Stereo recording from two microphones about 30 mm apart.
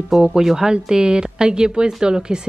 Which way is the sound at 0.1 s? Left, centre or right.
Centre.